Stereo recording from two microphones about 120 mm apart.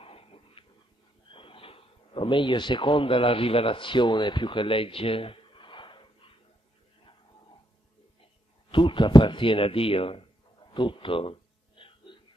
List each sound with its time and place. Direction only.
0.0 s dog: 50° left (ahead or behind)
1.3 s speech: 45° left (ahead or behind)
8.7 s speech: 45° left (ahead or behind)
10.7 s a sound: 45° left (ahead or behind)